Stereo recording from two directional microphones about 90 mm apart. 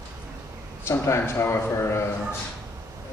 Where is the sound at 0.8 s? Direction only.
30° left (ahead or behind).